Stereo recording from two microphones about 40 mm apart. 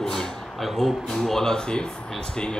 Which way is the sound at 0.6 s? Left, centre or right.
Centre.